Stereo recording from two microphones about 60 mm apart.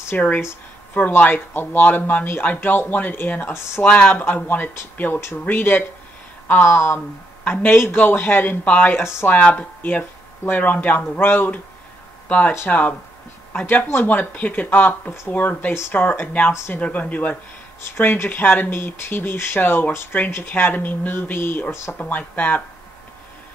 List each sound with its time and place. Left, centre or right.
0.1 s speech: left
3.8 s speech: left
4.1 s speech: left
9.4 s speech: left